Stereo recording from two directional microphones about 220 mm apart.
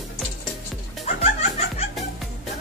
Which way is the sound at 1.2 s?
30° left (ahead or behind).